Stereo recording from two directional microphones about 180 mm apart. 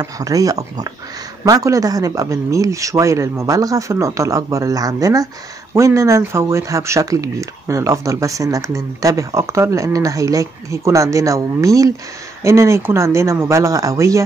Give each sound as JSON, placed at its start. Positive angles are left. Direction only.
{"t": 0.0, "sound": "speech", "side_deg": -20}